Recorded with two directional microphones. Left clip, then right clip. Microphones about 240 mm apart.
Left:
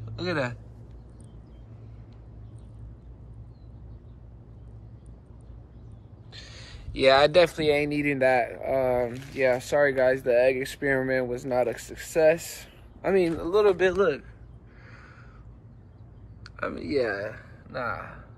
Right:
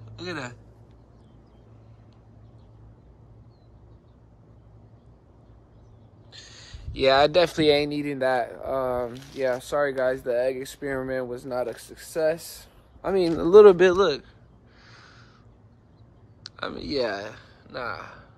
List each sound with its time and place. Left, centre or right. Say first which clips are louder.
0.1 s speech: left 5 dB; centre
6.3 s a sound: even; centre
7.5 s speech: right 4 dB; right
7.8 s speech: left 2 dB; centre
10.5 s speech: left 4 dB; right
10.8 s speech: left 4 dB; centre
13.3 s speech: right 9 dB; right
13.9 s speech: right 2 dB; centre
14.9 s crow: even; centre
16.4 s speech: left 1 dB; centre